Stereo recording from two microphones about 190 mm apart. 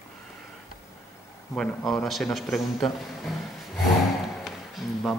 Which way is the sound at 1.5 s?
5° left (ahead or behind).